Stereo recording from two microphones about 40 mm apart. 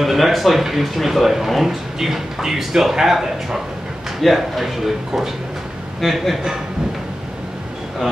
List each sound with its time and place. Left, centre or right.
0.0 s speech: centre